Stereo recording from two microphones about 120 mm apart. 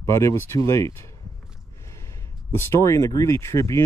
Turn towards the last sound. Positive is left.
turn(degrees=25)  # may be behind; listen again after turning